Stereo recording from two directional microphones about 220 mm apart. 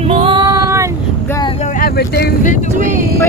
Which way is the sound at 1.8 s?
45° left (ahead or behind).